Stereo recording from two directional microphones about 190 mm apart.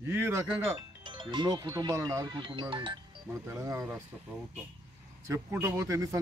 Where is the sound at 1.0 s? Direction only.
25° right (ahead or behind).